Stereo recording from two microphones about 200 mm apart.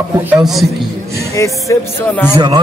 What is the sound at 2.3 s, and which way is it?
Speech, 20° right (ahead or behind).